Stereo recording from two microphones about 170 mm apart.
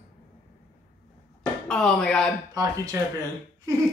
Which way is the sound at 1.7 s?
5° left (ahead or behind).